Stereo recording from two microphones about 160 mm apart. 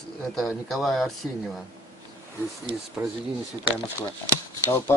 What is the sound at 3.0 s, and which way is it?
Speech, 20° right (ahead or behind).